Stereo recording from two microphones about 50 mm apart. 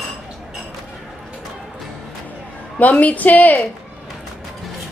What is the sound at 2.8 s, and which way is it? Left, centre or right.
Speech, left.